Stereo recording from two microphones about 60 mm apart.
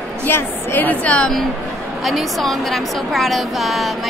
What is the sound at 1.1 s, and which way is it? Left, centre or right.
Speech, centre.